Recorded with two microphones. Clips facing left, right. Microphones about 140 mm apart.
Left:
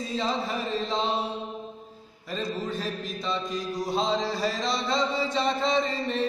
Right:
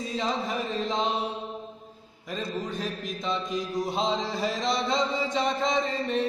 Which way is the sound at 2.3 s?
15° right (ahead or behind).